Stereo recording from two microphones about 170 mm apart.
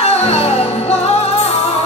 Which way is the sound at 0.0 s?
40° left (ahead or behind).